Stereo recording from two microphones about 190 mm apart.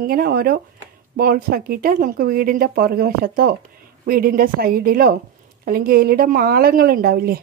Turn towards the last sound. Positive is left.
turn(degrees=-55)  # may be behind; listen again after turning